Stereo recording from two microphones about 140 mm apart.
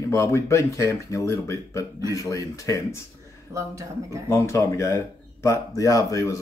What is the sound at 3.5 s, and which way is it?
Speech, 20° right (ahead or behind).